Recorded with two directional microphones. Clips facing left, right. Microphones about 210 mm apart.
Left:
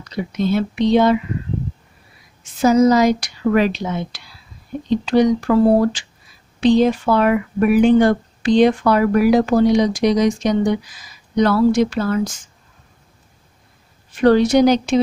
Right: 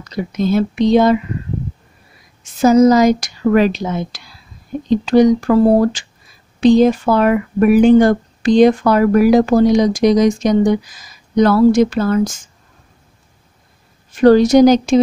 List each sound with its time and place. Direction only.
0.0 s speech: 45° right (ahead or behind)
2.6 s speech: 45° right (ahead or behind)
14.1 s speech: 40° right (ahead or behind)